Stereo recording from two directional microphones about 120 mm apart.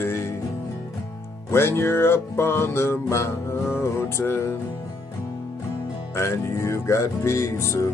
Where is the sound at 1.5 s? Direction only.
20° left (ahead or behind).